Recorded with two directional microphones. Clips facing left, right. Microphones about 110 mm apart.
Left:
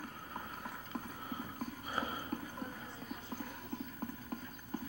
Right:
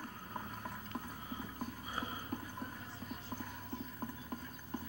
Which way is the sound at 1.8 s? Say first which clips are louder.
Left 6 dB; 80° left.